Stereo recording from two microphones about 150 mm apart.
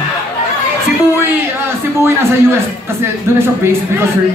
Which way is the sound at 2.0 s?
15° right (ahead or behind).